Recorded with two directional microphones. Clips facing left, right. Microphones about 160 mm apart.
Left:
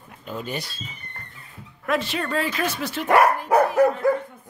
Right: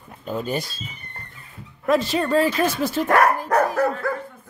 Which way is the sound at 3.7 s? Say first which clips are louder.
Left 4 dB; 15° left (ahead or behind).